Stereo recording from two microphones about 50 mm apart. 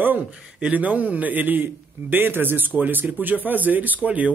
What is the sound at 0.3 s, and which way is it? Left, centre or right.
Speech, right.